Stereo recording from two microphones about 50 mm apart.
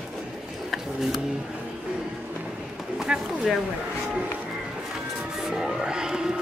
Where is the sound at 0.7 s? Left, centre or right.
Centre.